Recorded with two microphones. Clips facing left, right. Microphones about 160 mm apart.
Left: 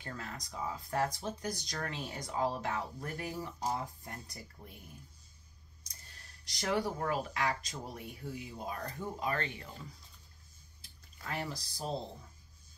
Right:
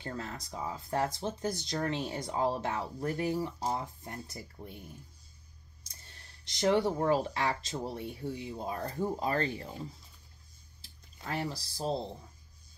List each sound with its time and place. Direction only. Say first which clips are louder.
0.0 s speech: right 5 dB; 30° right (ahead or behind)
5.9 s speech: right 2 dB; 25° right (ahead or behind)